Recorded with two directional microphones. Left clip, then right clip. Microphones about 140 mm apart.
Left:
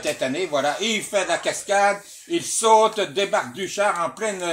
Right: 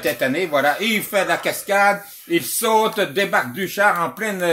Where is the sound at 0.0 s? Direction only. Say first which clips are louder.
Right 4 dB; 65° right (ahead or behind).